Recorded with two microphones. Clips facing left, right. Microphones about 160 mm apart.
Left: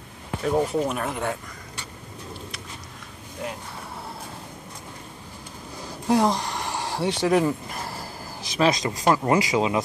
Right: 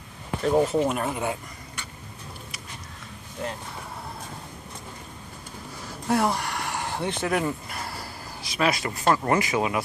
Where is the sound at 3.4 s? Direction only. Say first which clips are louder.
Even; 5° left (ahead or behind).